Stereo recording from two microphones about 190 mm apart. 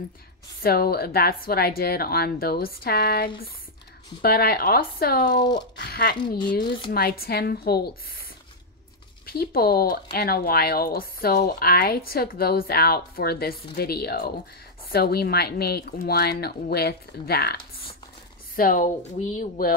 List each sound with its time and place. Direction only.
0.6 s speech: 55° left (ahead or behind)
18.6 s speech: 45° left (ahead or behind)